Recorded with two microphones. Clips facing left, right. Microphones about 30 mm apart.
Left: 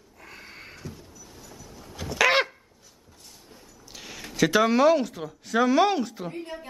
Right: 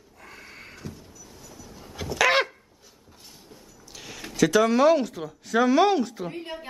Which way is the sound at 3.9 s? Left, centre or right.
Centre.